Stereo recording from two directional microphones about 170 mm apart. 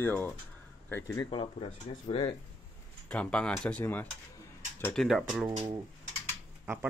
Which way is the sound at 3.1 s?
5° left (ahead or behind).